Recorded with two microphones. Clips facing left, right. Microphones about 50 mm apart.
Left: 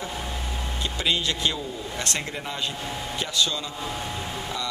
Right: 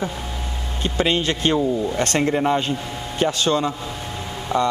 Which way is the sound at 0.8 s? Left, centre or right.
Right.